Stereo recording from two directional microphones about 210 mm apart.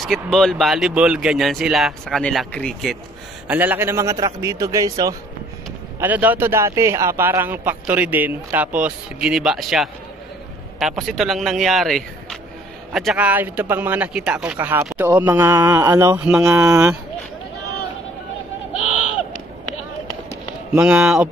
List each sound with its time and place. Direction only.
0.0 s speech: centre (ahead or behind)
3.4 s a man's voice: 10° right (ahead or behind)
16.5 s a man's voice: 15° right (ahead or behind)
18.8 s a sound: 90° left
20.7 s speech: 5° right (ahead or behind)